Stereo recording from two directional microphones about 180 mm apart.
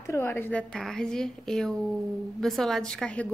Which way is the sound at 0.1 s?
10° left (ahead or behind).